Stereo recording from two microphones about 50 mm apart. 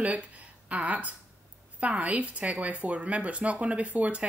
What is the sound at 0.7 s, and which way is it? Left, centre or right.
Speech, right.